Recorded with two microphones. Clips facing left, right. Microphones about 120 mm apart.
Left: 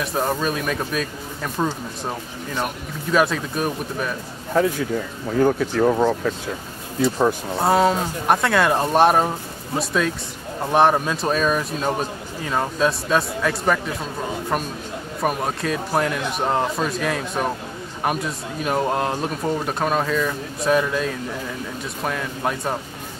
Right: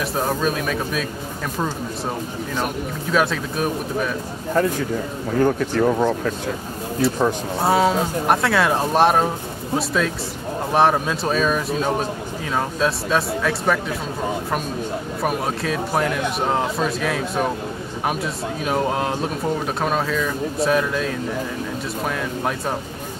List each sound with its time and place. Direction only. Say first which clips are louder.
0.0 s speech: right 1 dB; centre (ahead or behind)
2.5 s speech: right 1 dB; centre (ahead or behind)
15.2 s speech: left 1 dB; centre (ahead or behind)